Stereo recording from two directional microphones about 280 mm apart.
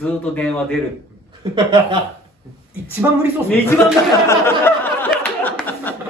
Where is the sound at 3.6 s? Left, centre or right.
Centre.